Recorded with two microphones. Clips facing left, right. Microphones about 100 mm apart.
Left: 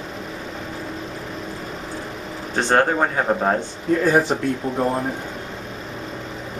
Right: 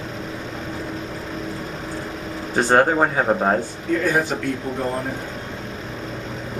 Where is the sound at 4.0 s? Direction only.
30° left (ahead or behind).